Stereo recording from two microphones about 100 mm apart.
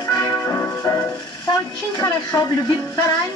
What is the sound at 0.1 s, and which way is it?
Music, 35° left (ahead or behind).